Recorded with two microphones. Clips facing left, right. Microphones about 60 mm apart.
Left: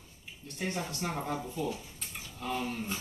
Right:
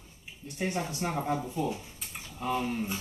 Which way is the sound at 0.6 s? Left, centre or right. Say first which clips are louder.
Right 3 dB; centre.